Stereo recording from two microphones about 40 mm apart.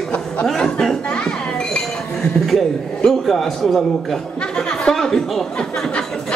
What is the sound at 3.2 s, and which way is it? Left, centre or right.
Speech, centre.